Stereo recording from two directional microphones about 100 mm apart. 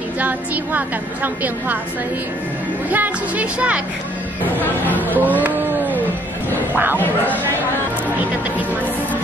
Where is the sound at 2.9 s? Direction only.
15° right (ahead or behind).